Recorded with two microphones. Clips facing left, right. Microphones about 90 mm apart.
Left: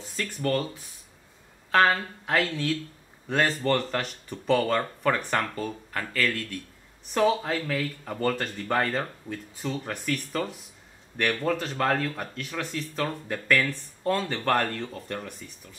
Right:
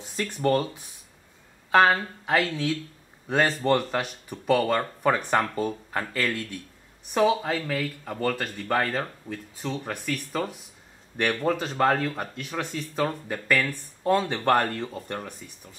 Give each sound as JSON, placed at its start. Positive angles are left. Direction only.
{"t": 0.1, "sound": "speech", "side_deg": -20}